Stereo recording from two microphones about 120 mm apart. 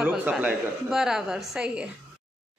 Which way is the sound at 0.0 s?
10° right (ahead or behind).